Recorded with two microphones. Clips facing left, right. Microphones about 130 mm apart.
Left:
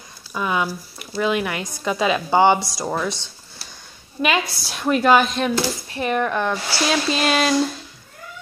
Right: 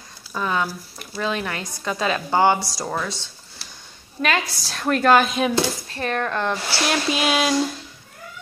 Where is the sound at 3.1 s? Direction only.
15° left (ahead or behind).